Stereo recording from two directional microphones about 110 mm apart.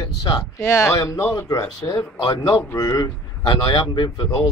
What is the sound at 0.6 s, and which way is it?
Speech, 25° left (ahead or behind).